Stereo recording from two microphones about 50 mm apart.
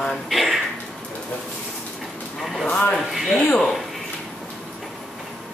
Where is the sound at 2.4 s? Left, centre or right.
Centre.